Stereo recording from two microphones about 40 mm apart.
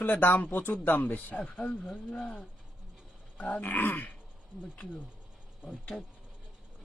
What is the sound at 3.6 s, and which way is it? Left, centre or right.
Speech, left.